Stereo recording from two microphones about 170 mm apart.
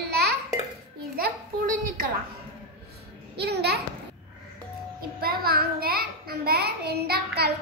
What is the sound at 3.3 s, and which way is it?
Speech, 75° right (ahead or behind).